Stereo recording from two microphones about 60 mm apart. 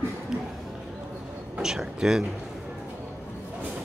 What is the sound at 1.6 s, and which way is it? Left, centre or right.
Speech, centre.